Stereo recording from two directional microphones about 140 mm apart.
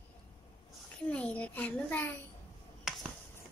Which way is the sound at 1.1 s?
10° left (ahead or behind).